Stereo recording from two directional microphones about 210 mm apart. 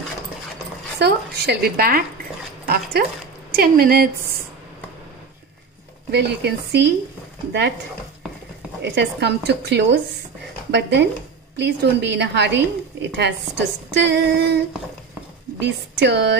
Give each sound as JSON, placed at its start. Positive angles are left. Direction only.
{"t": 0.9, "sound": "a woman's voice", "side_deg": -50}
{"t": 6.1, "sound": "a woman's voice", "side_deg": -55}
{"t": 8.8, "sound": "a woman's voice", "side_deg": -55}
{"t": 15.6, "sound": "a woman's voice", "side_deg": -55}